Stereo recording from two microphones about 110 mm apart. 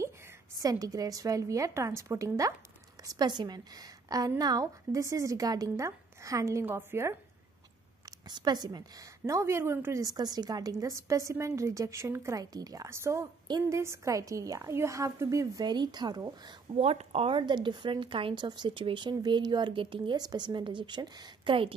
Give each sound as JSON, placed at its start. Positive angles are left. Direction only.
{"t": 0.6, "sound": "a woman's voice", "side_deg": -35}
{"t": 8.0, "sound": "a woman's voice", "side_deg": -40}
{"t": 9.2, "sound": "a woman's voice", "side_deg": -25}
{"t": 10.0, "sound": "a woman's voice", "side_deg": -40}
{"t": 16.7, "sound": "speech", "side_deg": -70}